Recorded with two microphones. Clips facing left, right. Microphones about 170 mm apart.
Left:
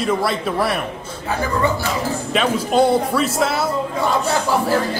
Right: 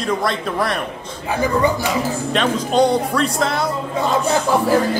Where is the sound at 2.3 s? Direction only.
5° left (ahead or behind).